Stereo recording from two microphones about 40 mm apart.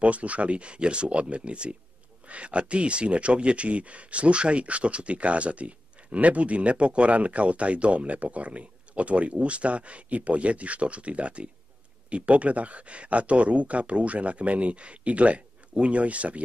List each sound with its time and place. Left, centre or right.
0.0 s speech: right